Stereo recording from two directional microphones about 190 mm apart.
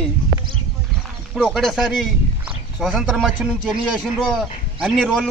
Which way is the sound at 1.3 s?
Centre (ahead or behind).